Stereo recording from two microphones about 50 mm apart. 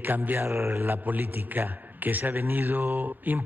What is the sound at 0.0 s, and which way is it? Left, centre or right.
Speech, right.